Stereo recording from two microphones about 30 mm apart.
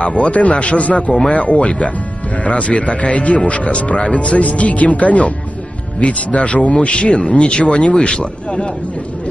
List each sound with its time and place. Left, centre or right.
0.0 s speech: left